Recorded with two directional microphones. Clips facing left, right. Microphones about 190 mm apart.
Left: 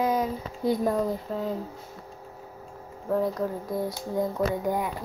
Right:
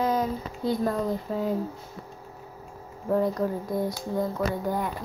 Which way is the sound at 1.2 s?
5° right (ahead or behind).